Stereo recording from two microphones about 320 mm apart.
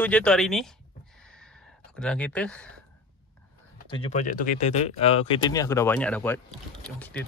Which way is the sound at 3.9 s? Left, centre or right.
Centre.